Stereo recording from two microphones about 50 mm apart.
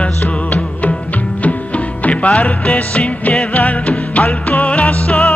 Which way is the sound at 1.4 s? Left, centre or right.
Left.